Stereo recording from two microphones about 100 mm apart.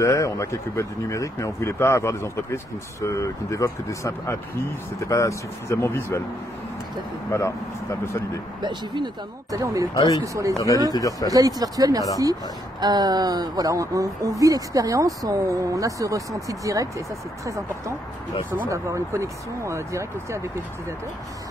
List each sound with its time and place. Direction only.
0.0 s speech: 30° left (ahead or behind)
7.2 s speech: 30° left (ahead or behind)
8.6 s speech: 50° right (ahead or behind)
9.5 s speech: 30° right (ahead or behind)
10.9 s speech: 35° left (ahead or behind)
11.2 s speech: 40° right (ahead or behind)
18.7 s speech: 30° right (ahead or behind)